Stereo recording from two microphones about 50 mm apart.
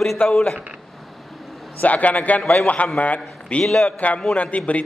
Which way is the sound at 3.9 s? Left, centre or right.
Left.